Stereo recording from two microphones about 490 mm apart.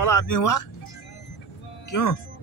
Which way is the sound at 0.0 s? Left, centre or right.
Left.